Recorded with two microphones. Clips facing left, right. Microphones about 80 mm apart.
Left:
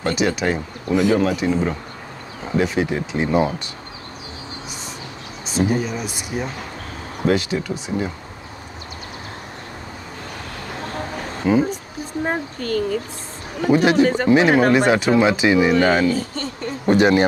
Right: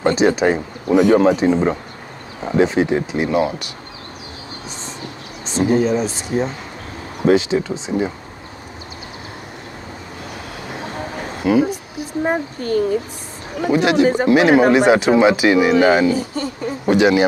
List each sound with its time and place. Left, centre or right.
0.0 s speech: right
0.9 s a man's voice: centre
1.2 s speech: right
3.3 s a man's voice: centre
5.5 s speech: right
10.7 s a sound: centre
13.6 s a man's voice: centre